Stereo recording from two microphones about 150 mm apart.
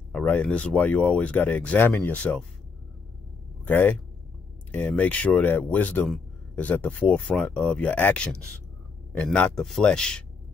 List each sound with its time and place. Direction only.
0.1 s speech: 10° left (ahead or behind)
3.6 s a man's voice: 10° left (ahead or behind)